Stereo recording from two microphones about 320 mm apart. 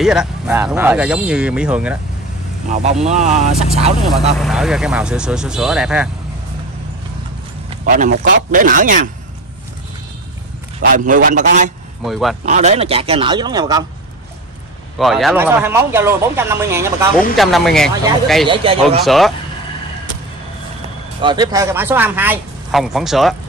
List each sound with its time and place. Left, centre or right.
0.0 s speech: centre
2.7 s speech: right
4.0 s speech: centre
7.8 s speech: right
11.1 s speech: right
12.0 s speech: centre
12.4 s speech: right
15.0 s speech: centre
18.5 s speech: centre
19.0 s speech: centre
21.2 s speech: centre